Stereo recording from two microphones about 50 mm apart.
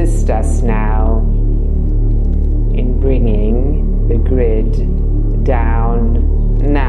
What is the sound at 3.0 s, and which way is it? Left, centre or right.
Speech, centre.